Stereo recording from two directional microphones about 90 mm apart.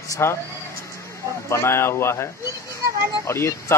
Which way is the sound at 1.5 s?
30° left (ahead or behind).